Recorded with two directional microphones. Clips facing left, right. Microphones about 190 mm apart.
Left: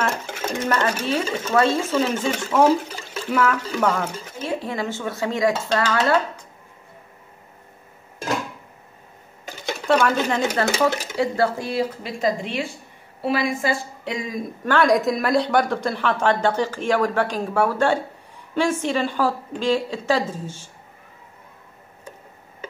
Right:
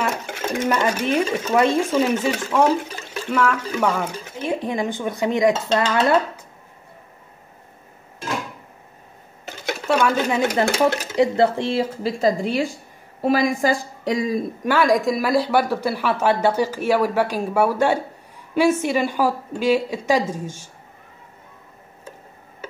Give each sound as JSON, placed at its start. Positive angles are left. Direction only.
{"t": 0.1, "sound": "sewing machine", "side_deg": 5}
{"t": 0.7, "sound": "speech", "side_deg": -15}
{"t": 3.7, "sound": "speech", "side_deg": -5}
{"t": 4.5, "sound": "speech", "side_deg": -20}
{"t": 9.7, "sound": "a sound", "side_deg": -5}
{"t": 11.1, "sound": "a woman's voice", "side_deg": -20}
{"t": 14.6, "sound": "speech", "side_deg": -5}